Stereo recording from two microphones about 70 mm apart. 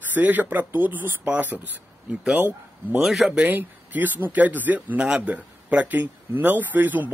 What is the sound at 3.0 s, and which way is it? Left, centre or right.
Speech, centre.